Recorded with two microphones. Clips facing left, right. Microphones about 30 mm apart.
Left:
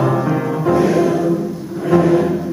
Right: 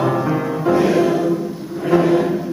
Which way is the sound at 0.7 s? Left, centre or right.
Centre.